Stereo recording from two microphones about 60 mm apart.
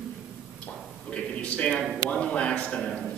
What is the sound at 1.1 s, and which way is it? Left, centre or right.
Speech, left.